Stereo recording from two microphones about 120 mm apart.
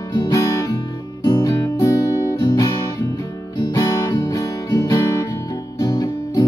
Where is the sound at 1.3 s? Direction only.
35° left (ahead or behind).